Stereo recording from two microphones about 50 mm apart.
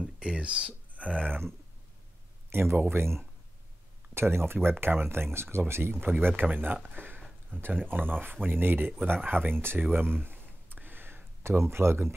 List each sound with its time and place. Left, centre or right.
0.0 s a sound: centre
2.5 s speech: right
4.1 s speech: right
5.9 s speech: right
9.8 s a sound: right
11.4 s speech: right